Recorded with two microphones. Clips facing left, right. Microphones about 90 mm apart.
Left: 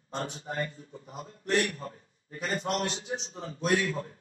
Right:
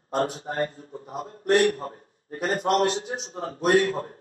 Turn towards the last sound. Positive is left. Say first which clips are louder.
# right 7 dB
turn(degrees=-45)  # may be behind; listen again after turning